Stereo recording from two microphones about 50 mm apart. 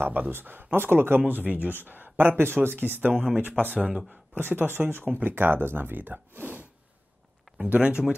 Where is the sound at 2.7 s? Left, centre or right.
Right.